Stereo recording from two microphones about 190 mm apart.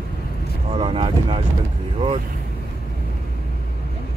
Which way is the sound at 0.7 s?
30° right (ahead or behind).